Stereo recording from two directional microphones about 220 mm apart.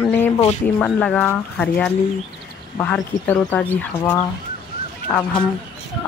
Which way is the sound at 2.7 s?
5° left (ahead or behind).